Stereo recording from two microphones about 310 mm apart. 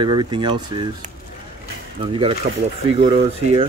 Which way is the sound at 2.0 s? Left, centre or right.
Centre.